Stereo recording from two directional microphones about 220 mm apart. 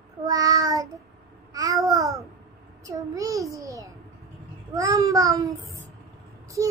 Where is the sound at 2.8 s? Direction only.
15° right (ahead or behind).